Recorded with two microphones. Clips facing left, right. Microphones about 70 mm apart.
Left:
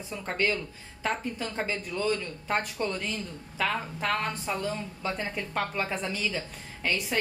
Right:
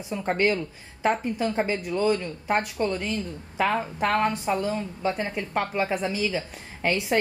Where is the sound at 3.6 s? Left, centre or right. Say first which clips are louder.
Right 6 dB; right.